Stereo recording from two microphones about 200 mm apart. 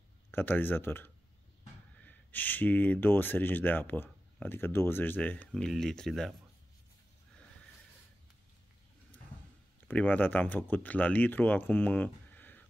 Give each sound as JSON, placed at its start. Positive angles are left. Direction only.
{"t": 0.3, "sound": "speech", "side_deg": 10}
{"t": 9.8, "sound": "speech", "side_deg": 10}